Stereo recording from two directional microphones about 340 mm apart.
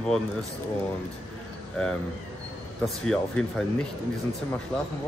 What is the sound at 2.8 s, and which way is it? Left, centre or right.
Speech, centre.